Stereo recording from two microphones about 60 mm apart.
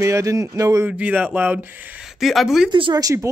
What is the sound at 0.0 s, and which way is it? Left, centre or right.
Speech, right.